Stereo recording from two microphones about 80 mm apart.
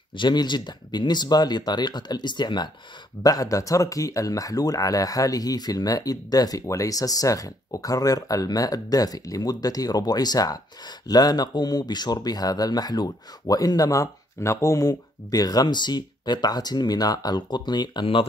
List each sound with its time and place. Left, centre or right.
0.1 s speech: left
3.2 s speech: left